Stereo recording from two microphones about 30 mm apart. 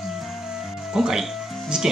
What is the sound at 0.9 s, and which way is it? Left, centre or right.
Speech, centre.